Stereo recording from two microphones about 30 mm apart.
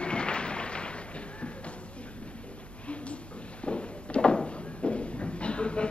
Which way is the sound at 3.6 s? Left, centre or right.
Left.